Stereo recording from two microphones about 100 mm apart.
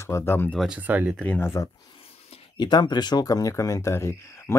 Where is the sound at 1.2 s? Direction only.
25° left (ahead or behind).